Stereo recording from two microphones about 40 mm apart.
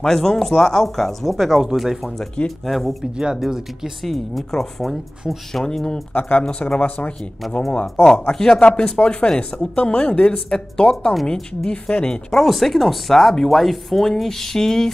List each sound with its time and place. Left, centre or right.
0.0 s speech: centre
2.4 s speech: left
2.7 s speech: centre
3.0 s speech: centre
4.0 s speech: centre
6.1 s speech: left
7.4 s speech: centre
7.8 s speech: centre
8.5 s speech: left
10.5 s speech: centre
12.3 s speech: centre